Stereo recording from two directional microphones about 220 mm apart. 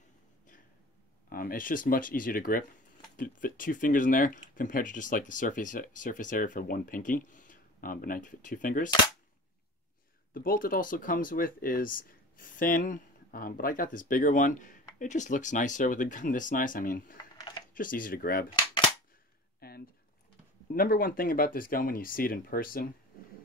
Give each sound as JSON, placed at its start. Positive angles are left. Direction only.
{"t": 1.3, "sound": "speech", "side_deg": 40}
{"t": 10.3, "sound": "speech", "side_deg": 40}
{"t": 19.6, "sound": "a sound", "side_deg": 45}
{"t": 20.7, "sound": "speech", "side_deg": 40}